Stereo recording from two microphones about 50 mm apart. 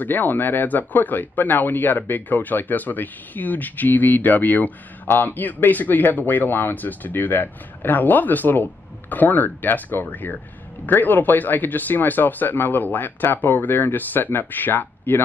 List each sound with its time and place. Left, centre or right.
0.0 s speech: left